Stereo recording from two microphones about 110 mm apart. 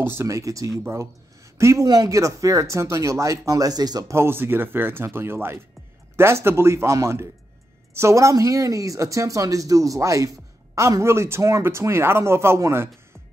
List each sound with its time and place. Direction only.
0.0 s speech: 25° right (ahead or behind)
4.1 s speech: 20° right (ahead or behind)